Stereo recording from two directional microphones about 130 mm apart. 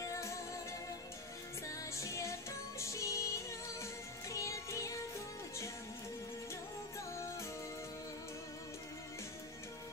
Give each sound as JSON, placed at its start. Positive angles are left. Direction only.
{"t": 0.0, "sound": "music", "side_deg": 25}
{"t": 2.0, "sound": "music", "side_deg": 20}